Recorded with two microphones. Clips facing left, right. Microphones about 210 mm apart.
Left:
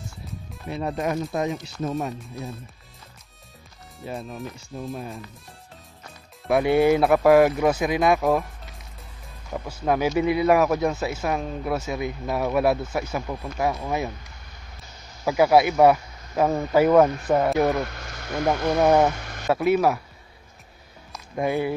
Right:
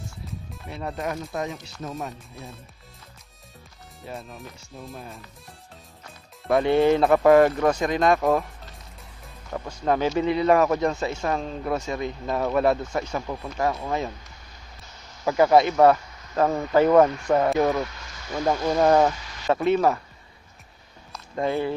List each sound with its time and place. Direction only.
0.7 s speech: 15° left (ahead or behind)
4.3 s speech: centre (ahead or behind)
6.5 s speech: 10° left (ahead or behind)
9.5 s speech: 5° left (ahead or behind)
15.2 s speech: 10° left (ahead or behind)
17.8 s speech: 60° left (ahead or behind)
19.0 s a sound: 55° left (ahead or behind)
19.5 s speech: 10° left (ahead or behind)
21.1 s music: 10° left (ahead or behind)